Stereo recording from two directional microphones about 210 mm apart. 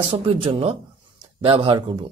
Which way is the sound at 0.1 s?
25° right (ahead or behind).